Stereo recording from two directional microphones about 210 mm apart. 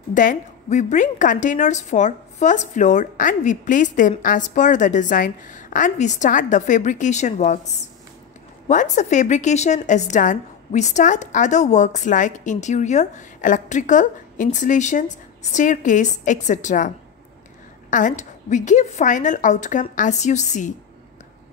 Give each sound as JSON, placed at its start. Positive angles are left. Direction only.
{"t": 0.1, "sound": "a woman's voice", "side_deg": 40}